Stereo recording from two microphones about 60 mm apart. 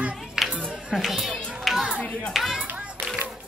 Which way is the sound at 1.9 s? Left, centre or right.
Left.